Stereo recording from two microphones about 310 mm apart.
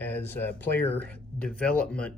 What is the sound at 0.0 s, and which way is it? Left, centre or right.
Speech, centre.